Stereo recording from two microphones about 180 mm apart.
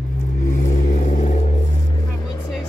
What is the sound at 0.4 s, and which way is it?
Vehicle, 45° left (ahead or behind).